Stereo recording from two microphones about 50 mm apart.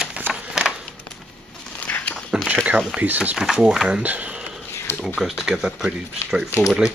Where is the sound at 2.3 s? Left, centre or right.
Centre.